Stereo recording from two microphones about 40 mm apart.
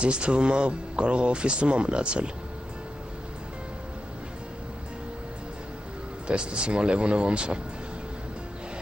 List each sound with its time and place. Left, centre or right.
0.0 s speech: right
6.2 s speech: right